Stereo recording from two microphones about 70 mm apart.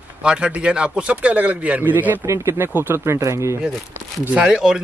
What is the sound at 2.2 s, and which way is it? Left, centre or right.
Speech, right.